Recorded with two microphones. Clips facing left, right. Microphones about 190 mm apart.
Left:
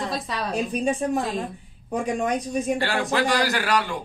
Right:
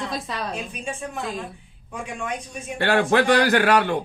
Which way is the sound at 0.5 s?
40° left (ahead or behind).